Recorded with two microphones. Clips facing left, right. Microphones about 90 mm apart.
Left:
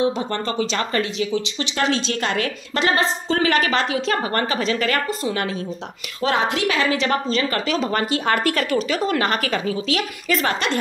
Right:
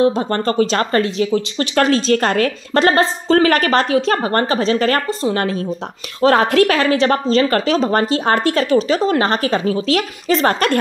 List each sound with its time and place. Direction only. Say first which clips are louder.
0.0 s speech: right 6 dB; 45° right (ahead or behind)